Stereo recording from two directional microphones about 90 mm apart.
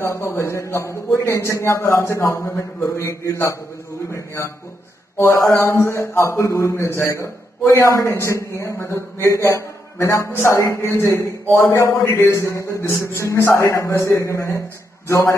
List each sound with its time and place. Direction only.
0.0 s a man's voice: 30° left (ahead or behind)
5.1 s a man's voice: 30° left (ahead or behind)